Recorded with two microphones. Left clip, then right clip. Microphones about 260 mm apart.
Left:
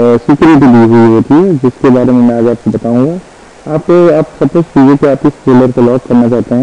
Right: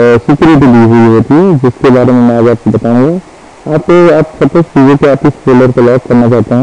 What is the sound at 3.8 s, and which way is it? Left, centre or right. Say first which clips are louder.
A man's voice: right 1 dB; centre.